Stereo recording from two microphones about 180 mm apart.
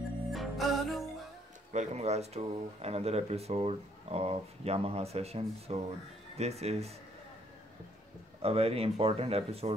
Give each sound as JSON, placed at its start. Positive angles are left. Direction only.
{"t": 0.3, "sound": "music", "side_deg": 0}
{"t": 1.7, "sound": "speech", "side_deg": -40}
{"t": 8.4, "sound": "speech", "side_deg": -35}